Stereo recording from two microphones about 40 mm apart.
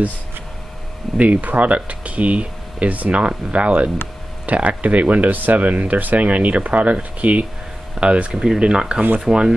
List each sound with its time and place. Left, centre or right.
1.2 s speech: right
7.9 s speech: right